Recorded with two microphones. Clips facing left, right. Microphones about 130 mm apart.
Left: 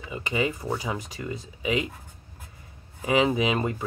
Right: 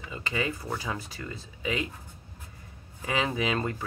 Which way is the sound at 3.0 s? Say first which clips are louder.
Left 6 dB; 20° left (ahead or behind).